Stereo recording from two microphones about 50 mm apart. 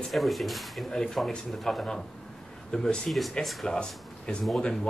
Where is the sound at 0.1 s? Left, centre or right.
Centre.